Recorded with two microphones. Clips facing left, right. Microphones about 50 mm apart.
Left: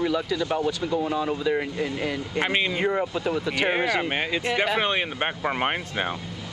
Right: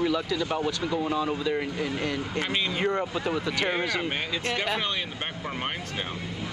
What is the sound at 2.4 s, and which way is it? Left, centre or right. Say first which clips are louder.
Speech: left 6 dB; left.